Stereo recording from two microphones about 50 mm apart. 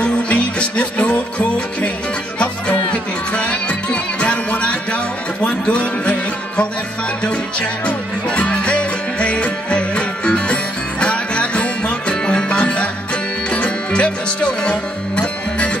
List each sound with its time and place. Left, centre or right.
0.0 s music: left
2.9 s music: left
7.8 s music: left